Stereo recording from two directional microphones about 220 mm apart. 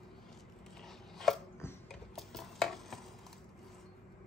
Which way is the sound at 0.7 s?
Centre (ahead or behind).